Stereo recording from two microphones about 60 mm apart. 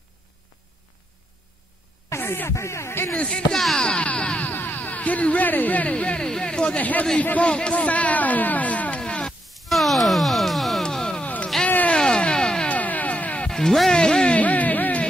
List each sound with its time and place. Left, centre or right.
2.0 s a sound: left
2.5 s speech: left
3.2 s speech: centre
3.5 s chop: centre; by 4.5 s left
4.5 s speech: left; by 6.8 s centre
6.8 s a man's voice: left
7.2 s a sound: left
9.2 s groan: centre
11.5 s a sound: centre
12.6 s music: left
13.5 s music: centre; by 15.0 s left